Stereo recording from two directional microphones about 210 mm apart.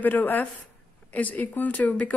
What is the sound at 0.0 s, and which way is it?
A woman's voice, 10° left (ahead or behind).